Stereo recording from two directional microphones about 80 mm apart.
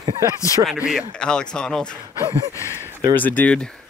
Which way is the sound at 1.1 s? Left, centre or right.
Centre.